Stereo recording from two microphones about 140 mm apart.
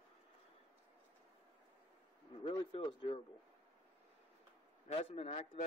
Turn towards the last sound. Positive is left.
turn(degrees=45)  # may be behind; listen again after turning